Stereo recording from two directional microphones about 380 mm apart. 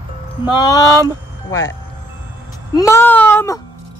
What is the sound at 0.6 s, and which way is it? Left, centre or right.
A woman's voice, centre.